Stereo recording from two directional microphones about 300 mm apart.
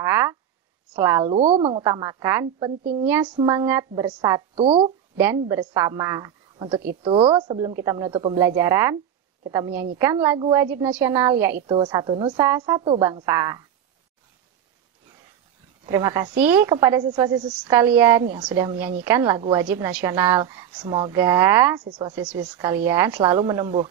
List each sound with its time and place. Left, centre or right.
0.0 s a sound: centre
0.9 s a woman's voice: centre
1.3 s a woman's voice: centre
5.1 s a woman's voice: centre
15.8 s a woman's voice: centre